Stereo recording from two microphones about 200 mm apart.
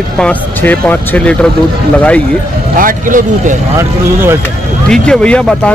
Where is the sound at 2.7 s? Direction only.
40° right (ahead or behind).